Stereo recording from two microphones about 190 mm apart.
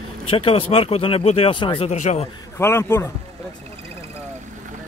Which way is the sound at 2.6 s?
15° left (ahead or behind).